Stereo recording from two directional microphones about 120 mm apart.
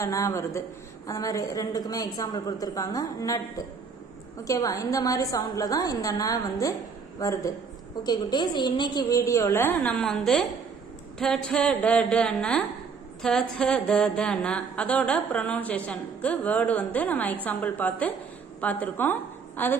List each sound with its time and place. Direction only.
0.0 s a woman's voice: 25° left (ahead or behind)
4.5 s a woman's voice: 30° left (ahead or behind)
9.9 s a woman's voice: centre (ahead or behind)
11.1 s a sound: 5° left (ahead or behind)
18.6 s a woman's voice: 15° left (ahead or behind)